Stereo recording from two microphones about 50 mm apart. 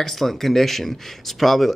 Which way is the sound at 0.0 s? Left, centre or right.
Centre.